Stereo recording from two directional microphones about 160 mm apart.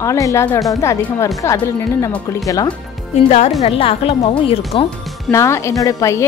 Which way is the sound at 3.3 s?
40° left (ahead or behind).